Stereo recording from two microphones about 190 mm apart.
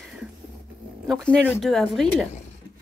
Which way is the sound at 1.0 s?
Centre (ahead or behind).